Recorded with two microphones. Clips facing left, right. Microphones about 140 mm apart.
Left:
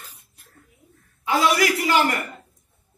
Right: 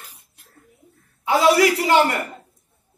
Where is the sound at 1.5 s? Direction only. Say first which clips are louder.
Right 5 dB; 30° right (ahead or behind).